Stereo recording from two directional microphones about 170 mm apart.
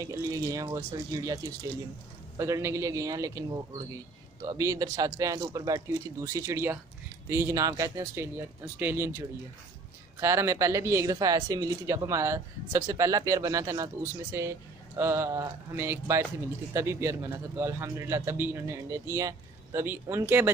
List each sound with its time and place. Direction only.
0.0 s a man's voice: 20° right (ahead or behind)
10.2 s a man's voice: 15° right (ahead or behind)